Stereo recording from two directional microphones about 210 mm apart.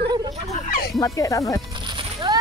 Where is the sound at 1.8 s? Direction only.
20° right (ahead or behind).